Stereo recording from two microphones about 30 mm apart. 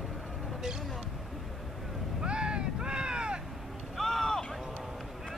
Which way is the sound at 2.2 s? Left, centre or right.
Right.